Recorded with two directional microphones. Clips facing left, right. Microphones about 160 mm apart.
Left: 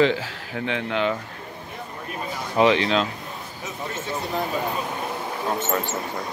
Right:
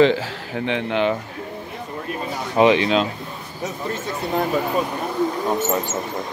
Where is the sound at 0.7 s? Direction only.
20° right (ahead or behind).